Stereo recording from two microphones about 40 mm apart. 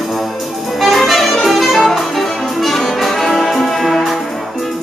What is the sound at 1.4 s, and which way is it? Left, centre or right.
Brass instrument, centre.